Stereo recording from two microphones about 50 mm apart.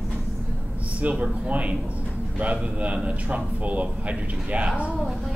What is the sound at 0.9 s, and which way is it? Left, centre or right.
A man's voice, right.